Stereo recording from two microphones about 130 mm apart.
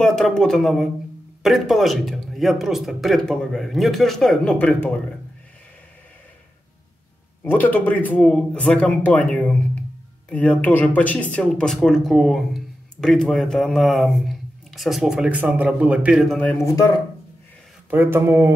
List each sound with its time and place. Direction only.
0.0 s speech: 5° left (ahead or behind)
7.4 s speech: 15° left (ahead or behind); by 16.3 s 5° right (ahead or behind)
16.5 s speech: 25° left (ahead or behind)
17.8 s speech: 15° right (ahead or behind)